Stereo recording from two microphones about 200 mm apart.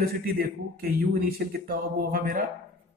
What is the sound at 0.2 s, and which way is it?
A man's voice, 45° right (ahead or behind).